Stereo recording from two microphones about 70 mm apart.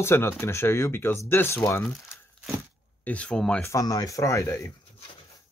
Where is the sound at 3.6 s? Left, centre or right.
Left.